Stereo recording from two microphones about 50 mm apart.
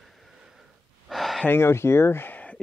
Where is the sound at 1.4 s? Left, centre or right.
Left.